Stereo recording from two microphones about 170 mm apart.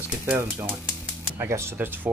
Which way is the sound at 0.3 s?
15° right (ahead or behind).